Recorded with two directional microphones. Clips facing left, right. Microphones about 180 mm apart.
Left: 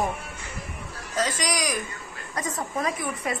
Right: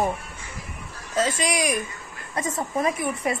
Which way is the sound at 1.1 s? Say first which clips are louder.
Right 3 dB; 25° right (ahead or behind).